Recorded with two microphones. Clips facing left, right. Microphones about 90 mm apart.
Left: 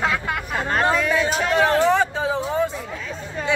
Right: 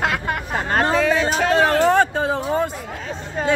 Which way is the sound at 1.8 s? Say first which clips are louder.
Right 2 dB; 55° right (ahead or behind).